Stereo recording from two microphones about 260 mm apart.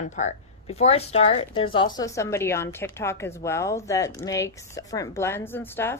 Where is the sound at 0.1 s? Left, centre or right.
Left.